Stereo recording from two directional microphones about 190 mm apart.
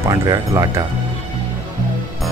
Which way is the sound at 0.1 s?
20° right (ahead or behind).